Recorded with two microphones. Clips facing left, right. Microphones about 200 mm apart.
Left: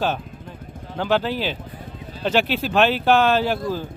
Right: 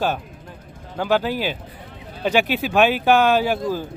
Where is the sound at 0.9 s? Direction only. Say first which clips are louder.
Right 1 dB; 10° right (ahead or behind).